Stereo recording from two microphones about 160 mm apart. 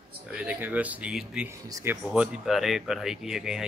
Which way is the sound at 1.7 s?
20° right (ahead or behind).